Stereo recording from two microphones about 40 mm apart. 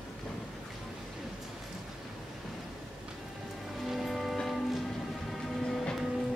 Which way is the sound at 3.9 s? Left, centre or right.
Centre.